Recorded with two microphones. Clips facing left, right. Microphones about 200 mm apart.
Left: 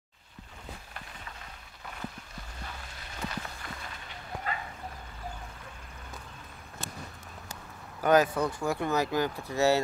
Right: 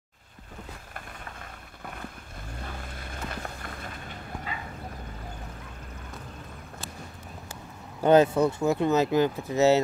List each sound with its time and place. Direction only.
2.8 s music: 50° right (ahead or behind)
4.5 s a sound: 50° left (ahead or behind)
8.0 s speech: 25° right (ahead or behind)